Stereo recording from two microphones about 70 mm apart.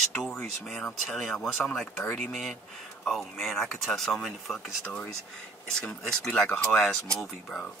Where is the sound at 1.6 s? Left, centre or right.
Centre.